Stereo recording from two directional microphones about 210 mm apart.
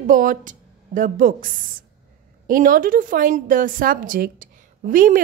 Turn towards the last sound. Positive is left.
turn(degrees=-40)  # may be behind; listen again after turning